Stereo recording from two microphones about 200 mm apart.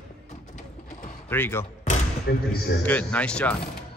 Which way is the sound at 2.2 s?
55° left (ahead or behind).